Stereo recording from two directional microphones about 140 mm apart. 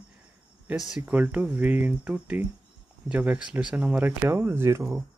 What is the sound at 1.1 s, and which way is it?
Speech, 10° right (ahead or behind).